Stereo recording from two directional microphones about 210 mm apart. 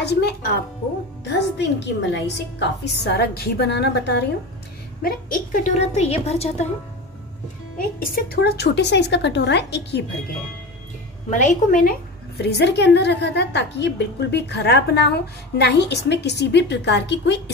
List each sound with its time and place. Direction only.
0.0 s a woman's voice: 50° left (ahead or behind)
5.0 s a woman's voice: 40° left (ahead or behind)
7.7 s a woman's voice: 45° left (ahead or behind)
11.2 s a woman's voice: 35° left (ahead or behind); by 17.4 s 55° left (ahead or behind)